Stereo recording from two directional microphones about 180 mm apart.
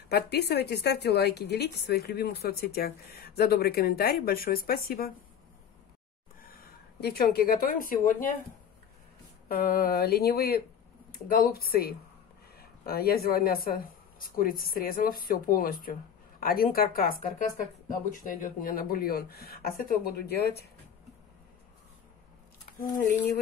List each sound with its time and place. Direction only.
0.1 s a woman's voice: 65° left (ahead or behind)
6.6 s speech: 60° left (ahead or behind)
9.5 s a woman's voice: 55° left (ahead or behind)